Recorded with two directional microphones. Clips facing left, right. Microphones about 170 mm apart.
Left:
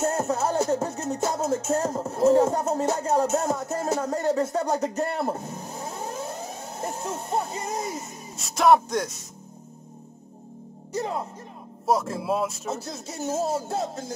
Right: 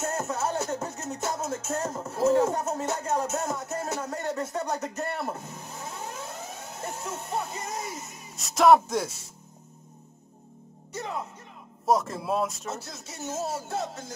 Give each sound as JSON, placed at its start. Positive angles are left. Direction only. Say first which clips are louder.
{"t": 0.0, "sound": "speech", "louder": "left 5 dB", "side_deg": 30}
{"t": 8.4, "sound": "speech", "louder": "even", "side_deg": 0}
{"t": 11.0, "sound": "music", "louder": "left 5 dB", "side_deg": 35}
{"t": 11.8, "sound": "speech", "louder": "left 1 dB", "side_deg": 0}
{"t": 12.9, "sound": "music", "louder": "left 6 dB", "side_deg": 30}